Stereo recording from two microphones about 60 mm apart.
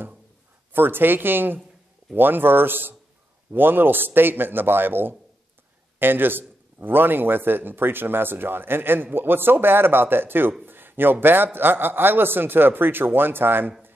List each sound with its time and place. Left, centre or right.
0.7 s a man's voice: right